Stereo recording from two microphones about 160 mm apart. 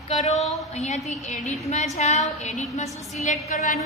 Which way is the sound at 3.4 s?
45° left (ahead or behind).